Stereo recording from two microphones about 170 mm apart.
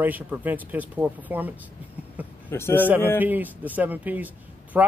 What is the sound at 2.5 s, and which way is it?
Speech, 15° left (ahead or behind).